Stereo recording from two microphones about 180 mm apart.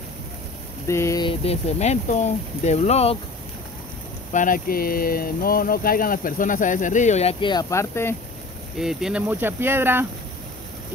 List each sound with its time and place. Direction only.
0.8 s speech: 15° left (ahead or behind); by 3.2 s 35° left (ahead or behind)
4.3 s speech: 45° left (ahead or behind); by 8.2 s 15° left (ahead or behind)
8.7 s speech: 5° right (ahead or behind)